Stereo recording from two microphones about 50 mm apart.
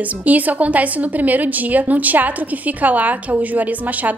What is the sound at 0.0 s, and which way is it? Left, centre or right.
A woman's voice, right.